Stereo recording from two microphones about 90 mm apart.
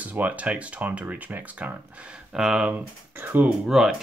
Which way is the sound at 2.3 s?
5° right (ahead or behind).